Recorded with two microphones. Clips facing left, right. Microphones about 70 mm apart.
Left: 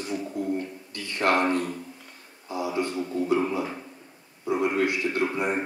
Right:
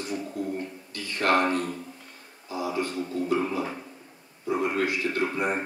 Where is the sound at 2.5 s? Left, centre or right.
Centre.